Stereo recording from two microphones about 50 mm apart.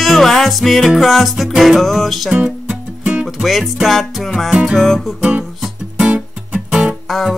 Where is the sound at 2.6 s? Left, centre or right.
Right.